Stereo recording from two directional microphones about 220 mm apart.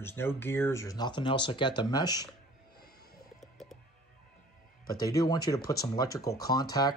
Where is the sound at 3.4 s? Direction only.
Centre (ahead or behind).